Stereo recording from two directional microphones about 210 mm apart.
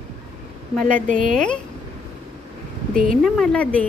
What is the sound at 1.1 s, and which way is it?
Speech, 40° right (ahead or behind).